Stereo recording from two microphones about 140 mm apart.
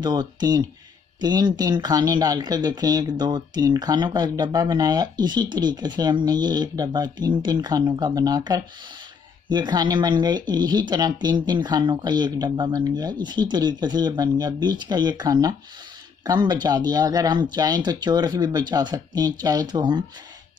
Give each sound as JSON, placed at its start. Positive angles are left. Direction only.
{"t": 0.0, "sound": "speech", "side_deg": -30}